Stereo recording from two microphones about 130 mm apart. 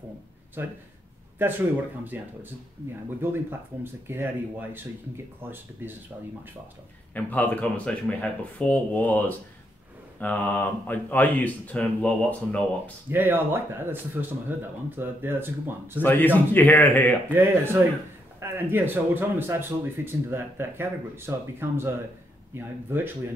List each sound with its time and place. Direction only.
0.6 s speech: 15° right (ahead or behind)
2.1 s speech: 15° right (ahead or behind)
7.2 s speech: 10° left (ahead or behind)
13.1 s speech: 15° right (ahead or behind)
16.0 s speech: 15° left (ahead or behind)
17.3 s speech: 15° right (ahead or behind)